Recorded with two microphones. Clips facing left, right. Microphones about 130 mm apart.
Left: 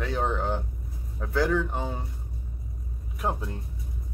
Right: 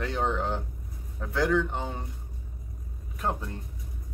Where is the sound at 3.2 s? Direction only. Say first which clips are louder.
Left 1 dB; 10° left (ahead or behind).